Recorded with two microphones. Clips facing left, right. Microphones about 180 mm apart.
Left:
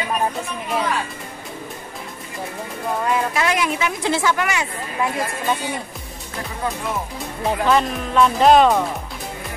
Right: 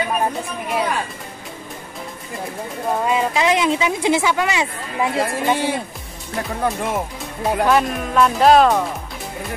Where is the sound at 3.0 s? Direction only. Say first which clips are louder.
Right 2 dB; 20° right (ahead or behind).